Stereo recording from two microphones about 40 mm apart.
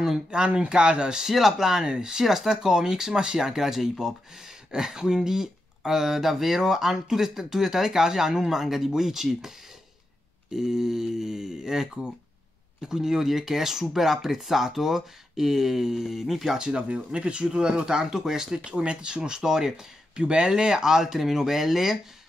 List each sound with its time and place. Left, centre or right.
0.3 s speech: right
1.2 s speech: centre
10.5 s speech: centre
16.5 s speech: right
18.7 s speech: right; by 21.9 s centre